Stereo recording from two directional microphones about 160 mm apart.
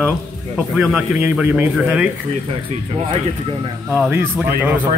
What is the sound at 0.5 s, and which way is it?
Speech, 5° right (ahead or behind).